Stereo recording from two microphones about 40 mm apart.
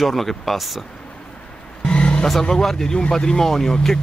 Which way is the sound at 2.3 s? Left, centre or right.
Centre.